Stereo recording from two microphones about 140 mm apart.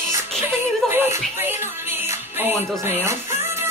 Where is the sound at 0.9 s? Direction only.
15° right (ahead or behind).